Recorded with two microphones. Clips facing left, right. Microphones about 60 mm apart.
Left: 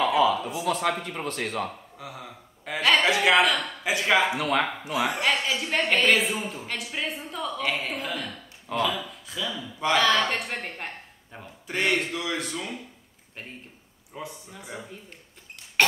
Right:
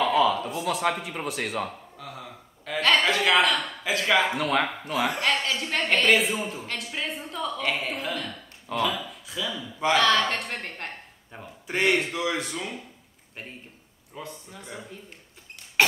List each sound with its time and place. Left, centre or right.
0.0 s a man's voice: centre
2.0 s a sound: centre
9.9 s a man's voice: centre
11.6 s a man's voice: centre
14.1 s a man's voice: centre